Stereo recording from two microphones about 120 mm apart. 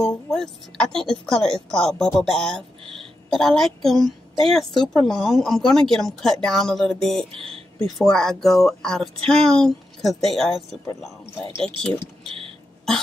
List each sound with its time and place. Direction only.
0.0 s a woman's voice: 5° left (ahead or behind)
7.2 s speech: 50° right (ahead or behind)
8.0 s speech: 5° left (ahead or behind)